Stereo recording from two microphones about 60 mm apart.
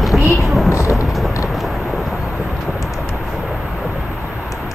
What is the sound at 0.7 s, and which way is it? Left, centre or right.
Vehicle, left.